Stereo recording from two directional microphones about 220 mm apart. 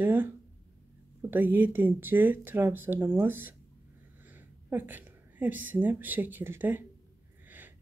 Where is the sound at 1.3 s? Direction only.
10° right (ahead or behind).